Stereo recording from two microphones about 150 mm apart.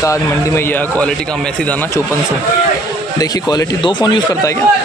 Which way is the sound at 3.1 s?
25° left (ahead or behind).